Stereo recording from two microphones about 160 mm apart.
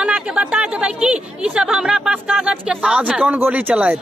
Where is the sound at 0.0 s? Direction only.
5° right (ahead or behind).